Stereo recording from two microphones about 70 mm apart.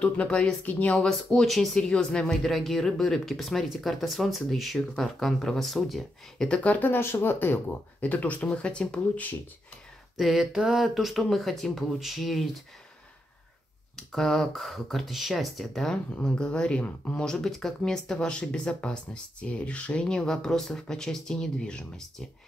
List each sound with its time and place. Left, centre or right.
0.0 s speech: centre
0.9 s speech: centre
10.1 s speech: centre
13.9 s speech: centre
16.1 s speech: centre
17.2 s speech: centre